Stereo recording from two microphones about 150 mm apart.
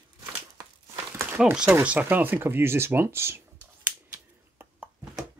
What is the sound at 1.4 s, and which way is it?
Speech, 5° right (ahead or behind).